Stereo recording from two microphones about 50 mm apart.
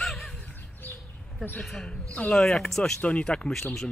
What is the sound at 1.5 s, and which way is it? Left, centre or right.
Speech, centre.